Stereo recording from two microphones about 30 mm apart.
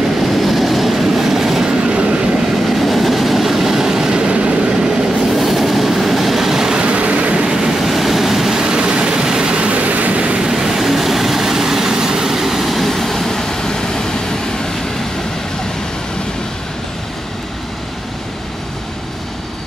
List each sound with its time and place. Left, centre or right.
0.4 s train: centre
1.7 s train: right
2.7 s vehicle: centre; by 4.6 s right
4.6 s train: right
5.3 s train: centre
6.6 s vehicle: right
6.9 s vehicle: right
7.3 s vehicle: right
7.6 s vehicle: centre
8.6 s vehicle: right
9.7 s vehicle: right
10.5 s train: centre
12.4 s vehicle: centre; by 14.1 s left